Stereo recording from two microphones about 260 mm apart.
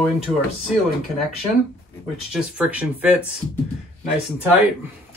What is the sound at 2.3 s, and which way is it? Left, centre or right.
Speech, centre.